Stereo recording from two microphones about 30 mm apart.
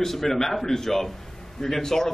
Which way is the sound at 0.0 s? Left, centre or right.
Centre.